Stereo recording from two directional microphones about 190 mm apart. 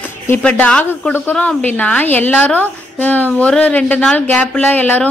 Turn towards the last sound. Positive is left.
turn(degrees=10)  # may be behind; listen again after turning